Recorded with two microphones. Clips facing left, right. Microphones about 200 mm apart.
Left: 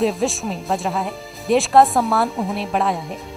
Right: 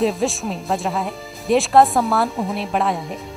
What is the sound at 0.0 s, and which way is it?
Speech, centre (ahead or behind).